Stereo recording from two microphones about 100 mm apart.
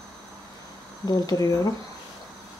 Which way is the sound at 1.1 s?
40° left (ahead or behind).